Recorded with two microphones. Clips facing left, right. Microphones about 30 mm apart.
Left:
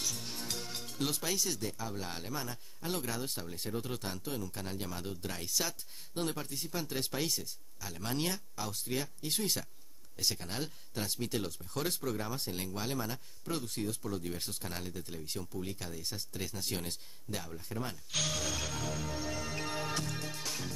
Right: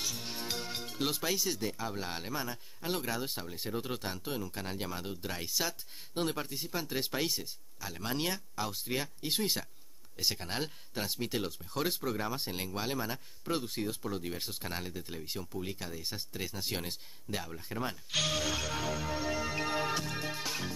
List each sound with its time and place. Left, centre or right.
0.0 s speech: centre
18.7 s music: centre